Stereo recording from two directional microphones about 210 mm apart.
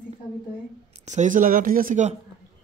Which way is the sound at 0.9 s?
35° right (ahead or behind).